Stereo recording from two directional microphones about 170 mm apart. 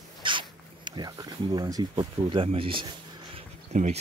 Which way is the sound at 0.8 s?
25° right (ahead or behind).